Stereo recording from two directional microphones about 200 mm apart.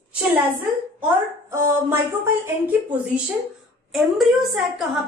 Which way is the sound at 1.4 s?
15° right (ahead or behind).